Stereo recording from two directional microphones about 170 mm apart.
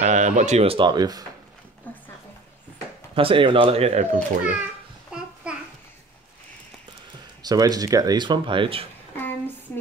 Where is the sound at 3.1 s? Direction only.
30° right (ahead or behind).